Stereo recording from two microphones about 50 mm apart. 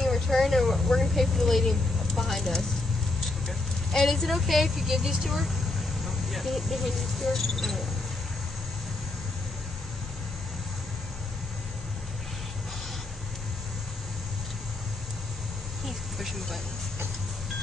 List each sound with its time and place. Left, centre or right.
0.0 s vehicle: centre
3.3 s speech: centre
15.8 s a sound: centre